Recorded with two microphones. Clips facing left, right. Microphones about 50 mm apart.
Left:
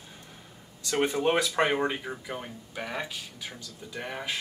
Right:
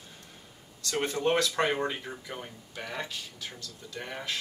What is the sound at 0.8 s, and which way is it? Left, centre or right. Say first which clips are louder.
Speech: left 3 dB; centre.